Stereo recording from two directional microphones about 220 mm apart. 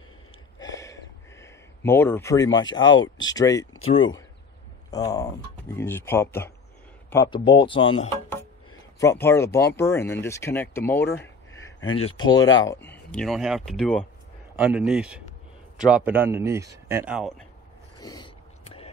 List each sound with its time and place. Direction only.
0.6 s a sound: 15° left (ahead or behind)
2.7 s speech: 20° left (ahead or behind)
4.9 s speech: 15° left (ahead or behind)
9.0 s speech: 15° left (ahead or behind)
12.0 s a man's voice: 25° left (ahead or behind); by 16.7 s 10° right (ahead or behind)
17.1 s speech: centre (ahead or behind)
18.0 s a sound: 20° left (ahead or behind)